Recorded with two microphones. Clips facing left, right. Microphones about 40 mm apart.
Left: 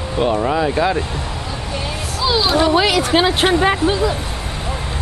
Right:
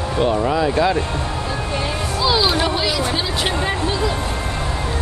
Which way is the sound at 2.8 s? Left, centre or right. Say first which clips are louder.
Left 6 dB; left.